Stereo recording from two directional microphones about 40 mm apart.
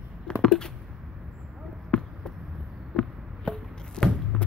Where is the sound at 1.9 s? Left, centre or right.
Left.